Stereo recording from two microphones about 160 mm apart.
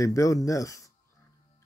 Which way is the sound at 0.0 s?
20° left (ahead or behind).